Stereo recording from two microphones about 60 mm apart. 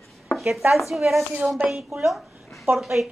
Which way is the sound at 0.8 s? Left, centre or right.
Centre.